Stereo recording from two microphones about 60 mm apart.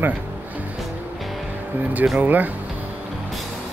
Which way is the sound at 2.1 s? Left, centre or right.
Right.